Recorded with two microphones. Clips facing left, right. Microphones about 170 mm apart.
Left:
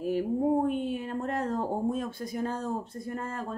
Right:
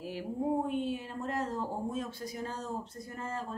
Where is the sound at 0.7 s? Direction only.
55° left (ahead or behind).